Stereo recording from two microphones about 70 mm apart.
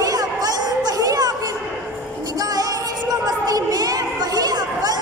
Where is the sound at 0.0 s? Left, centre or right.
Right.